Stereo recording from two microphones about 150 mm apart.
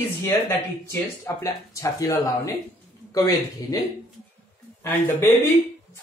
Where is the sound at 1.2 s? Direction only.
20° left (ahead or behind).